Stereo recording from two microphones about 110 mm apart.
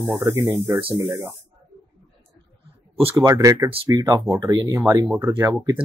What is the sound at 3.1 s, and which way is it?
Speech, 30° right (ahead or behind).